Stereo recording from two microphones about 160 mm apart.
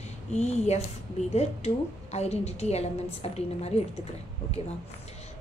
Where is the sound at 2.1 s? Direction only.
45° left (ahead or behind).